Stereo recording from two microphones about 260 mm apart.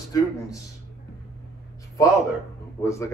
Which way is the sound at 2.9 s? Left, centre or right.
Centre.